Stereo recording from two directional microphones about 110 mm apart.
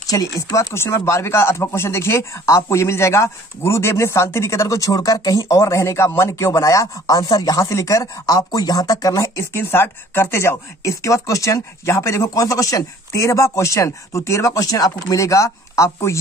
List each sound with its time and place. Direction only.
0.1 s speech: 30° left (ahead or behind)